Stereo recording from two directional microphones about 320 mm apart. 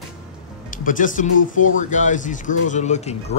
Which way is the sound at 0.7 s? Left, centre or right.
Left.